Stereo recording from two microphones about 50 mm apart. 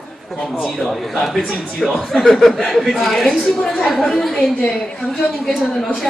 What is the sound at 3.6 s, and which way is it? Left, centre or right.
A woman's voice, centre.